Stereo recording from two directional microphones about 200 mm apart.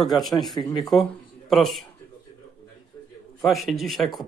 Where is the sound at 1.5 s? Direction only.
Centre (ahead or behind).